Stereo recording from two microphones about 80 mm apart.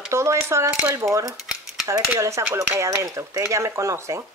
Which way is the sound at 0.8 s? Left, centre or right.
Right.